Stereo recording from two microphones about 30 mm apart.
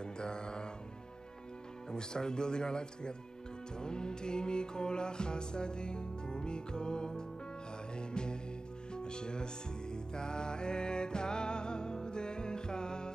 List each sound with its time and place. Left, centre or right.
0.0 s mantra: left
1.9 s speech: left
3.8 s music: left